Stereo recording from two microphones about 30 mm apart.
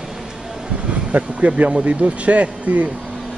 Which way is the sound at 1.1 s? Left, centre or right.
Right.